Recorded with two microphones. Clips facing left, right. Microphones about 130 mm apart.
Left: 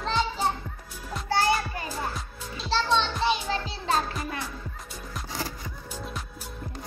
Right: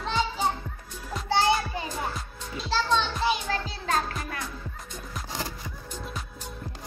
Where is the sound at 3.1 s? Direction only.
5° right (ahead or behind).